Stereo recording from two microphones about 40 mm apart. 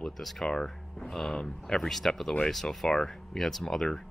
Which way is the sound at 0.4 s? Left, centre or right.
Centre.